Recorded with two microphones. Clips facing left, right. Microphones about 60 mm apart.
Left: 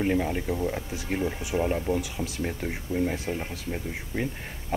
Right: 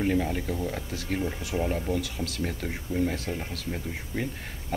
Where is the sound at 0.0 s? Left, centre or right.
Centre.